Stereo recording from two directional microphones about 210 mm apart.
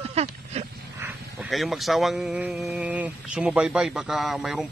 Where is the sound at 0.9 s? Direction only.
10° right (ahead or behind).